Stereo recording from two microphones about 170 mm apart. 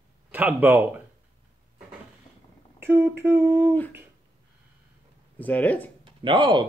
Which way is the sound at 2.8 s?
15° right (ahead or behind).